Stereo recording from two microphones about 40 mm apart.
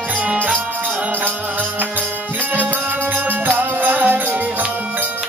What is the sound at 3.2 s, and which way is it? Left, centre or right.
Music, right.